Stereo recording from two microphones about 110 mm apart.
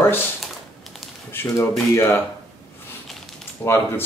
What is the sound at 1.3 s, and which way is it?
Speech, 20° left (ahead or behind).